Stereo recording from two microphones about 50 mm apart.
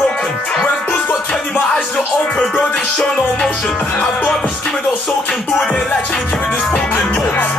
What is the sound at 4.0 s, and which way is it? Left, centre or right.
Music, centre.